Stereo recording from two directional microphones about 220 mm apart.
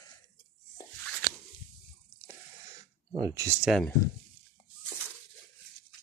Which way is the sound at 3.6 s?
Centre (ahead or behind).